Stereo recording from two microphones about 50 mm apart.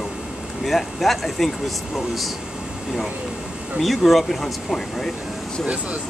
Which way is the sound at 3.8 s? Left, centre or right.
Centre.